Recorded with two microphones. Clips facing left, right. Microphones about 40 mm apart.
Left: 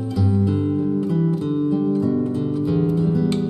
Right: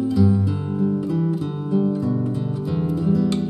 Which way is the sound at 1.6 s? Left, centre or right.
Centre.